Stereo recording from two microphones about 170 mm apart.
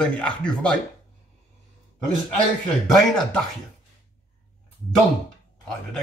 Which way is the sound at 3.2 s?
5° left (ahead or behind).